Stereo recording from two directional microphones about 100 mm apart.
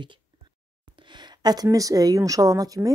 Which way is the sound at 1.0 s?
50° right (ahead or behind).